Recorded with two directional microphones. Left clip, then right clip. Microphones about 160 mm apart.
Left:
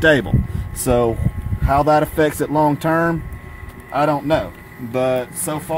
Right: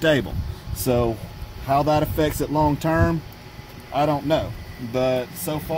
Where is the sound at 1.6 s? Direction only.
30° left (ahead or behind).